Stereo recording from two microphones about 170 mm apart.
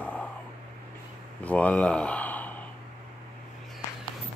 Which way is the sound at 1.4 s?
10° left (ahead or behind).